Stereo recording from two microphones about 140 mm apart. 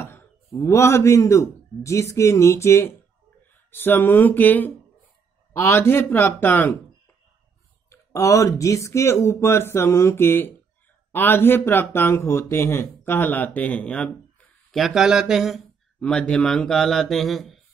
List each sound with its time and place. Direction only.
0.7 s speech: 20° left (ahead or behind)
7.9 s speech: 20° left (ahead or behind); by 17.6 s centre (ahead or behind)